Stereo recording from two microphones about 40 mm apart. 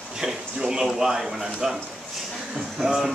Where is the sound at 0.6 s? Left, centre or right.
Centre.